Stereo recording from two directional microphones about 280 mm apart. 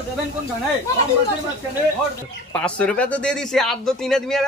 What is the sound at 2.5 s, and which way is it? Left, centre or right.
A man's voice, centre.